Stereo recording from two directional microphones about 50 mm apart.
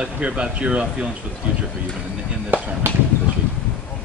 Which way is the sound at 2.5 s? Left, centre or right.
Right.